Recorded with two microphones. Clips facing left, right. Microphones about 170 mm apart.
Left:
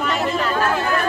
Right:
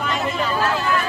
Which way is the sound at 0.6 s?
50° left (ahead or behind).